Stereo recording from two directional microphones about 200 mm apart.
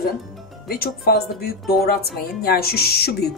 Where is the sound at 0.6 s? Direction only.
50° left (ahead or behind).